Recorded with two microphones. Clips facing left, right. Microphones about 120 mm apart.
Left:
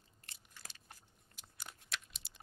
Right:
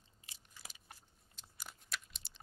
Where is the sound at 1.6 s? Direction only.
Centre (ahead or behind).